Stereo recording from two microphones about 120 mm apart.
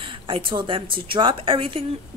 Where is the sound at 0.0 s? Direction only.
45° right (ahead or behind).